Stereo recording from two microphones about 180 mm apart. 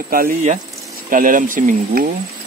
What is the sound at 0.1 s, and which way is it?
Speech, 50° right (ahead or behind).